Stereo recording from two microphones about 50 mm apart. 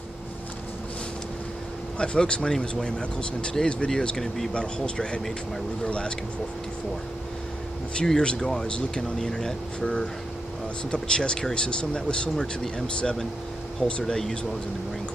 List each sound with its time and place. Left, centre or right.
2.0 s speech: centre
8.0 s speech: centre
10.9 s speech: centre